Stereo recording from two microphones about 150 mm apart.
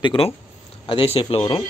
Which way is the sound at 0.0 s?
35° left (ahead or behind).